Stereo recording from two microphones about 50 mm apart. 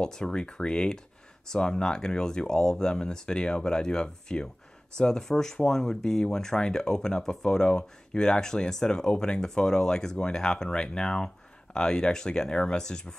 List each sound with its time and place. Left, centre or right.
0.0 s speech: centre